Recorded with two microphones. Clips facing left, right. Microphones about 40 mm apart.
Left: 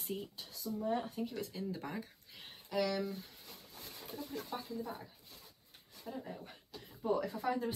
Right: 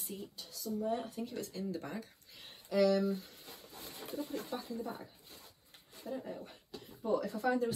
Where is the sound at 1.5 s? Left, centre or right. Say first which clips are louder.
Right 1 dB; centre.